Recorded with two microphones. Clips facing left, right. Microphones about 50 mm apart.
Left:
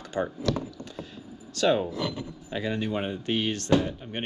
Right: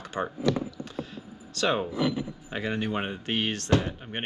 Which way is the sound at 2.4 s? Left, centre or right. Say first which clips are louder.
Left 2 dB; right.